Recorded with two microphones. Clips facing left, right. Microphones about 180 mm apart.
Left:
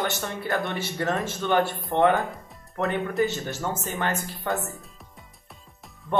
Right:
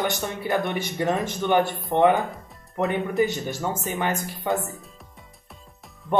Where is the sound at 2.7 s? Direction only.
20° right (ahead or behind).